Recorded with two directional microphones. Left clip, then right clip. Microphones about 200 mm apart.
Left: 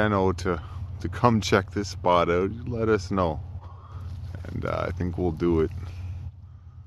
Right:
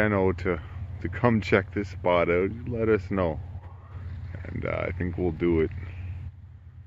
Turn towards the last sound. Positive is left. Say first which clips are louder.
# left 1 dB
turn(degrees=15)  # may be behind; listen again after turning